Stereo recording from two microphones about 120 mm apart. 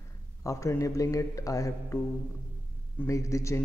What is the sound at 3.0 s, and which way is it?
Speech, 25° left (ahead or behind).